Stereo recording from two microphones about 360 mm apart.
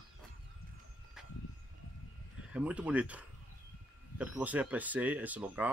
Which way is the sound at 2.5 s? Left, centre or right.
Centre.